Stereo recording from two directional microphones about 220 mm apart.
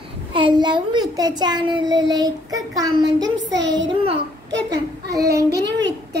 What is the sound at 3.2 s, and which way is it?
Child singing, 55° right (ahead or behind).